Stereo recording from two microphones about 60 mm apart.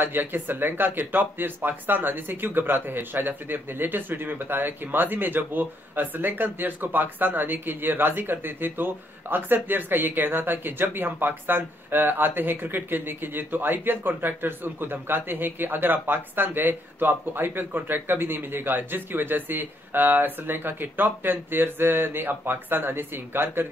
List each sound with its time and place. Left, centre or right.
0.0 s speech: right